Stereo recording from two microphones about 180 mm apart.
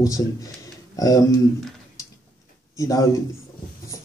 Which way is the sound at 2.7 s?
15° left (ahead or behind).